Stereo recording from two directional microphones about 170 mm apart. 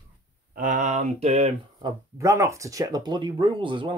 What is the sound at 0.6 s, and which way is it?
Speech, 50° right (ahead or behind).